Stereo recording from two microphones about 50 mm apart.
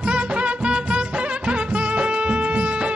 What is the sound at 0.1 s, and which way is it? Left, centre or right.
Music, centre.